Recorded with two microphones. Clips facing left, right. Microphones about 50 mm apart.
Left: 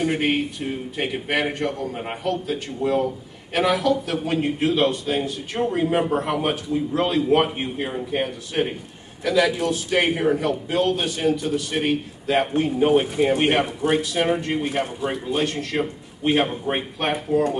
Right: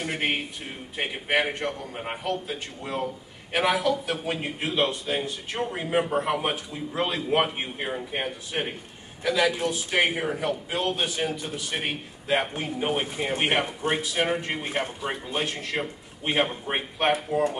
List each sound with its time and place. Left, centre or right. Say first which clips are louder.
0.2 s a man's voice: left 6 dB; centre
2.2 s a man's voice: left 7 dB; centre